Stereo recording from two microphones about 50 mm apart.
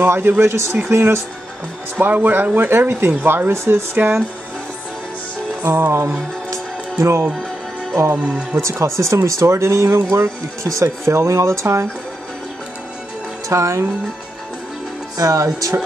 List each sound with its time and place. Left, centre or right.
0.0 s speech: right
2.0 s speech: right
3.5 s speech: right
3.9 s speech: right
5.9 s speech: right
6.5 s music: right
8.5 s speech: right
13.5 s speech: right
15.2 s speech: right